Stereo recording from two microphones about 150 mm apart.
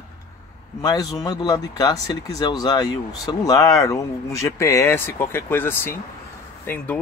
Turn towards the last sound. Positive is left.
turn(degrees=15)  # may be behind; listen again after turning